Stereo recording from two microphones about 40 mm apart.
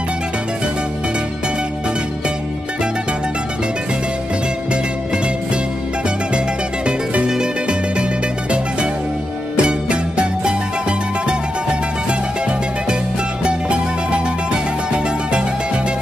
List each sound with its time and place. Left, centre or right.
7.2 s music: right
9.6 s music: right
13.4 s music: right